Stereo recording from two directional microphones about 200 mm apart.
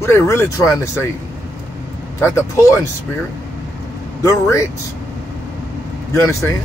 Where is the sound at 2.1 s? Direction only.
10° left (ahead or behind).